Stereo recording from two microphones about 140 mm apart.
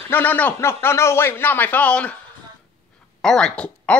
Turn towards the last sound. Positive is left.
turn(degrees=10)  # may be behind; listen again after turning